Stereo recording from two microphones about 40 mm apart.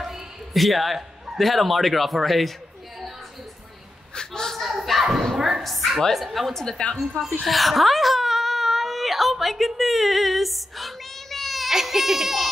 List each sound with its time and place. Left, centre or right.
0.0 s a sound: centre
1.4 s speech: centre
4.1 s a sound: centre
4.6 s a sound: centre
6.1 s speech: centre
6.5 s a woman's voice: centre
7.4 s whimper: centre
9.7 s child singing: centre
11.7 s baby cry: centre